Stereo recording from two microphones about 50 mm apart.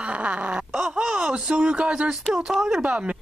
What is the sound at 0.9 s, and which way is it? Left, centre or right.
Speech, centre.